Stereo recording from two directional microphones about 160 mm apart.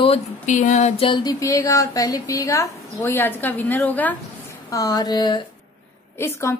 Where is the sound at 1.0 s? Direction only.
25° left (ahead or behind).